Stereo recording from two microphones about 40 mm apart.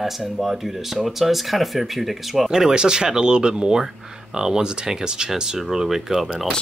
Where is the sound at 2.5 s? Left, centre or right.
Centre.